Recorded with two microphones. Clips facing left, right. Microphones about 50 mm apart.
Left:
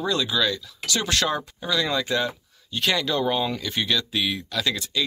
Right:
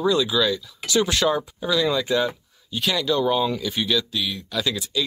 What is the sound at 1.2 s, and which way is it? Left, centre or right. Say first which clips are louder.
Speech: right 4 dB; centre.